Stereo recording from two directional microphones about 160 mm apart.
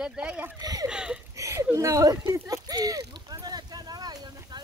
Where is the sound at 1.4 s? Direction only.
20° right (ahead or behind).